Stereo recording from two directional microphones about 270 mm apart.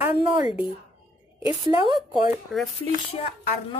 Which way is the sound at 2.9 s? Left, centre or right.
Left.